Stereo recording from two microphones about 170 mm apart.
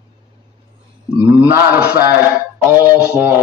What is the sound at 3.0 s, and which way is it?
Speech, 10° right (ahead or behind).